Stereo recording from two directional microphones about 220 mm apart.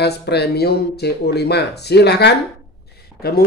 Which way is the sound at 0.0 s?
50° left (ahead or behind).